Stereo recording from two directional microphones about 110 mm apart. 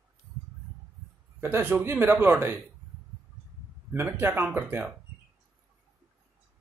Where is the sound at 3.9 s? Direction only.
20° right (ahead or behind).